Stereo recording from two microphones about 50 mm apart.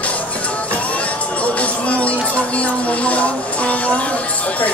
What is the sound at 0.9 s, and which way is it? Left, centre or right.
Music, left.